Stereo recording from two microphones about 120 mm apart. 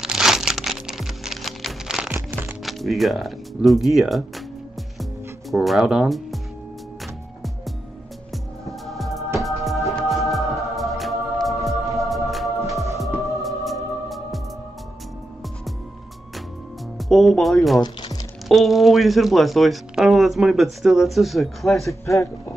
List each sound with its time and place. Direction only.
0.0 s crumpling: 5° right (ahead or behind)
2.0 s music: 15° right (ahead or behind)
2.6 s speech: centre (ahead or behind)
5.5 s speech: centre (ahead or behind)
8.8 s music: centre (ahead or behind)
17.1 s speech: centre (ahead or behind)
17.8 s music: 35° left (ahead or behind)
18.5 s speech: centre (ahead or behind)
22.0 s speech: 25° left (ahead or behind)